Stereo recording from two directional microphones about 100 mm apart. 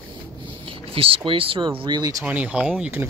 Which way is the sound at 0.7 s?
70° right (ahead or behind).